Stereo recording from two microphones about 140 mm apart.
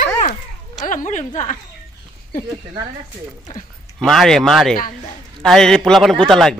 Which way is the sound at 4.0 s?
5° left (ahead or behind).